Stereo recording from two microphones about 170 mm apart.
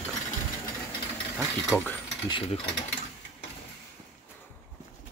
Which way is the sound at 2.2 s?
30° left (ahead or behind).